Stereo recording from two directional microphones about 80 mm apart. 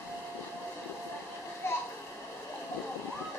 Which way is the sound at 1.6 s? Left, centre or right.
Left.